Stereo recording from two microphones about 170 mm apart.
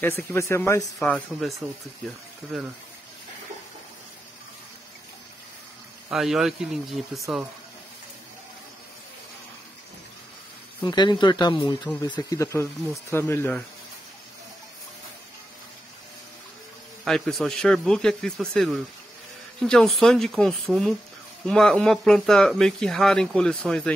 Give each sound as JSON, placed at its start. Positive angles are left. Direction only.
{"t": 0.0, "sound": "speech", "side_deg": 15}
{"t": 0.9, "sound": "speech", "side_deg": 5}
{"t": 2.5, "sound": "speech", "side_deg": 0}
{"t": 6.0, "sound": "speech", "side_deg": 0}
{"t": 10.8, "sound": "speech", "side_deg": 25}
{"t": 17.0, "sound": "speech", "side_deg": 0}